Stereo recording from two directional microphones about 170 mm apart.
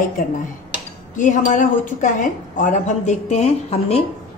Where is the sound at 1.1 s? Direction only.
50° left (ahead or behind).